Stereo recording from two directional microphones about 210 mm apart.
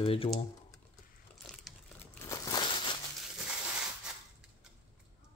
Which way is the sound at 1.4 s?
Centre (ahead or behind).